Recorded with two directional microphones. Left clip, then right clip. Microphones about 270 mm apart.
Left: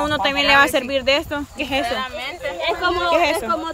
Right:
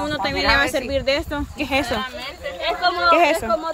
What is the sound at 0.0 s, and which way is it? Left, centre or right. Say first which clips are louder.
Speech: left 3 dB; centre.